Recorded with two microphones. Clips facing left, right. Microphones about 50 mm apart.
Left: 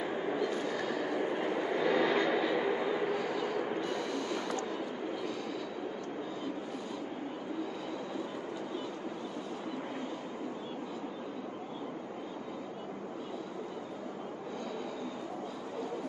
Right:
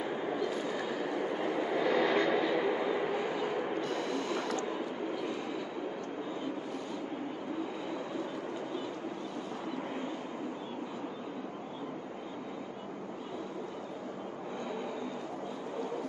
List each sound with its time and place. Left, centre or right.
0.5 s a sound: centre
1.4 s train: centre
3.2 s bow-wow: centre
4.0 s vehicle: right